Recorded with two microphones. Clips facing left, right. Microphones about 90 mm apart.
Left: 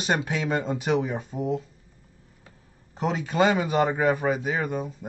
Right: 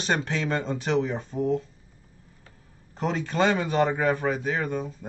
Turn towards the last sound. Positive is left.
turn(degrees=10)  # may be behind; listen again after turning